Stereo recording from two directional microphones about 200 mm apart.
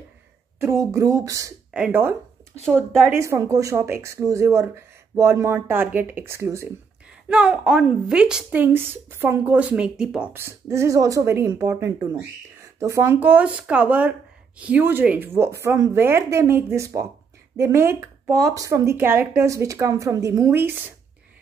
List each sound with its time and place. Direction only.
0.6 s speech: 15° right (ahead or behind)